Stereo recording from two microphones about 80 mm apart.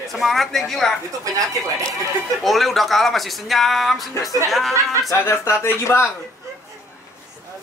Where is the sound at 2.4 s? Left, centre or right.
Centre.